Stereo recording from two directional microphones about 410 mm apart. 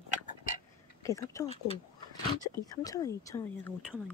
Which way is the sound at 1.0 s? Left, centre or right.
Centre.